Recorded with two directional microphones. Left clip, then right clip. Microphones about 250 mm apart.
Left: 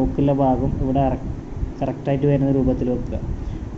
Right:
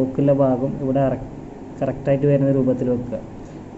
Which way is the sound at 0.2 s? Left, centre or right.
Centre.